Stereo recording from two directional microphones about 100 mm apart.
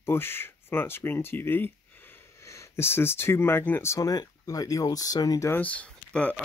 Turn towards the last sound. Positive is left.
turn(degrees=15)  # may be behind; listen again after turning